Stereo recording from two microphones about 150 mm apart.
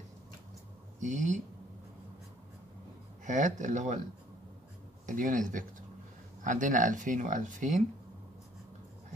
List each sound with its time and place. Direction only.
1.0 s speech: 55° right (ahead or behind)
3.3 s speech: 55° right (ahead or behind)
5.0 s speech: 60° right (ahead or behind)